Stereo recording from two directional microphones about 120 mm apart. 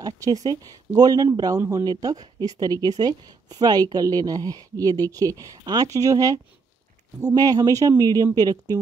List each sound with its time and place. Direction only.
0.0 s speech: 30° right (ahead or behind)